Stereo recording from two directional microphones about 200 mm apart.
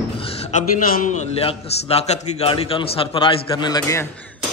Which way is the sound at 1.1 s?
35° left (ahead or behind).